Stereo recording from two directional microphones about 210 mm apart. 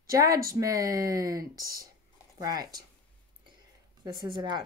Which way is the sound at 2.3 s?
20° right (ahead or behind).